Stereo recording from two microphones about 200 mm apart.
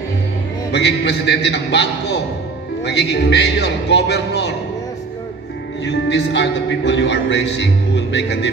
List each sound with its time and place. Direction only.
0.7 s a man's voice: 55° left (ahead or behind)
5.9 s a man's voice: 60° left (ahead or behind)